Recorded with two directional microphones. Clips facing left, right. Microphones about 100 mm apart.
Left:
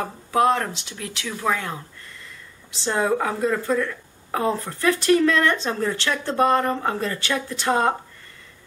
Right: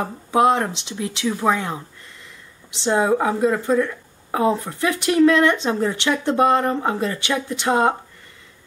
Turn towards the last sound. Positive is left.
turn(degrees=-20)  # may be behind; listen again after turning